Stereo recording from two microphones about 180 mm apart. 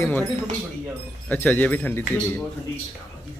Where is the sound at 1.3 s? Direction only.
10° left (ahead or behind).